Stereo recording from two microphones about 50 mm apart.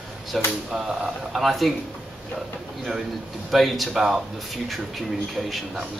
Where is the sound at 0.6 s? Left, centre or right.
Centre.